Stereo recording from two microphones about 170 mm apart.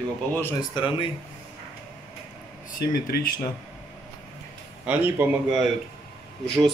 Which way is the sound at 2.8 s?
65° left (ahead or behind).